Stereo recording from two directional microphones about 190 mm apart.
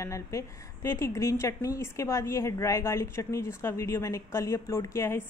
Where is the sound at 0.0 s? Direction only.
15° left (ahead or behind).